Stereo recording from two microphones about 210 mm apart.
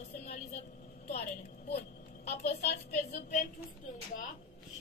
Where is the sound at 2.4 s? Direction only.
30° left (ahead or behind).